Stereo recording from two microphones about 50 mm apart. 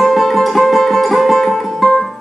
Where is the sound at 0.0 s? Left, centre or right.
Centre.